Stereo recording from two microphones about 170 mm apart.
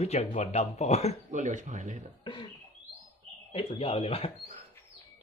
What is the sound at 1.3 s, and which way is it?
Speech, 45° right (ahead or behind).